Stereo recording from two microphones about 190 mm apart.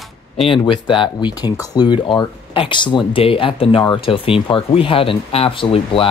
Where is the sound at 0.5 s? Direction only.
25° left (ahead or behind).